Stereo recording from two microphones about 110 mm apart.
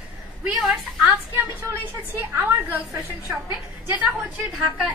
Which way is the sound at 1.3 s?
20° right (ahead or behind).